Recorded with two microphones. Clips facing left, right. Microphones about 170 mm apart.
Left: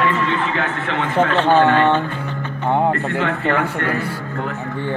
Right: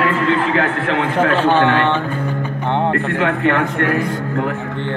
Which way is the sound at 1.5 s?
10° left (ahead or behind).